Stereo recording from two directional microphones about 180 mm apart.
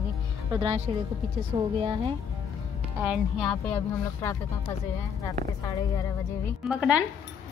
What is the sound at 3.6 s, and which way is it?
Speech, 15° left (ahead or behind).